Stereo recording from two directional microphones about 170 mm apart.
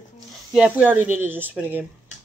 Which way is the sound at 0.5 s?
5° right (ahead or behind).